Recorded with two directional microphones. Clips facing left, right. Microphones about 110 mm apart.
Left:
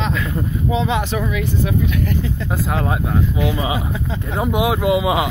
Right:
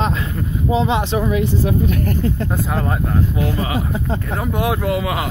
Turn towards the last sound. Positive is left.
turn(degrees=15)  # may be behind; listen again after turning